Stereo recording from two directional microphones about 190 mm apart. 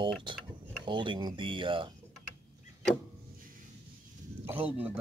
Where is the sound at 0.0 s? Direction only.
25° right (ahead or behind).